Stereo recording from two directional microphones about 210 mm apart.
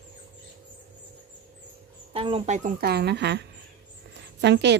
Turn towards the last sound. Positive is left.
turn(degrees=-55)  # may be behind; listen again after turning